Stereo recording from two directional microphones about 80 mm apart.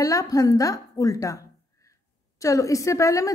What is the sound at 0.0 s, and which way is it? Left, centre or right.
A woman's voice, left.